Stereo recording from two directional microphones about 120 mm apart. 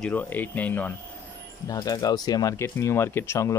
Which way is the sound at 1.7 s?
30° left (ahead or behind).